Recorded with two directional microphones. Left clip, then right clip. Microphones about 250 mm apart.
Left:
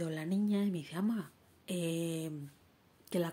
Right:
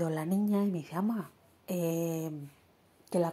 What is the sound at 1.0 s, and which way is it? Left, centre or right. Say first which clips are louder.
Speech: right 3 dB; centre.